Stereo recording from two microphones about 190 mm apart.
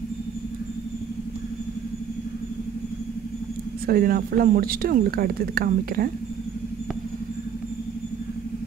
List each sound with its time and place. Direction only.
3.8 s speech: 50° right (ahead or behind)